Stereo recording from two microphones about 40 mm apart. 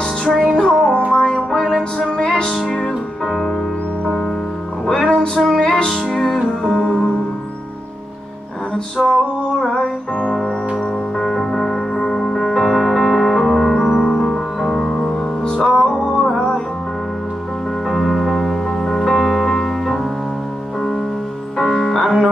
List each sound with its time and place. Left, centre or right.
0.3 s music: centre
1.1 s music: centre
2.1 s music: centre
4.8 s music: centre
9.0 s music: centre
11.1 s music: centre
12.4 s music: centre
17.8 s music: centre
21.5 s music: centre